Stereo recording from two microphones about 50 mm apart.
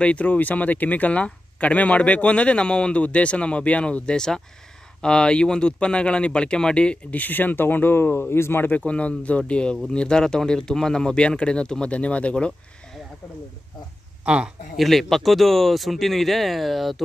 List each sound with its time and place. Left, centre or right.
0.0 s speech: left
7.1 s speech: left
8.7 s speech: left
14.2 s a man's voice: right
14.8 s speech: centre